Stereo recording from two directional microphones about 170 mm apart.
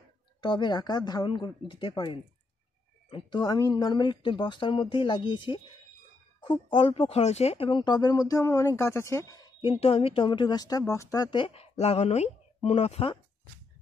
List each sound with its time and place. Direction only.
0.4 s speech: 30° left (ahead or behind)